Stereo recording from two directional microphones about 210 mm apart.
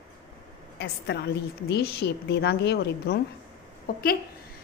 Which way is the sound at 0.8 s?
55° left (ahead or behind).